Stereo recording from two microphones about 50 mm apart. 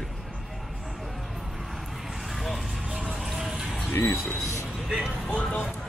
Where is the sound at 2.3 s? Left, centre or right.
Centre.